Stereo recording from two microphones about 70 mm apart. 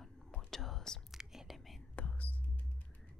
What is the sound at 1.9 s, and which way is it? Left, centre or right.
Whispering, left.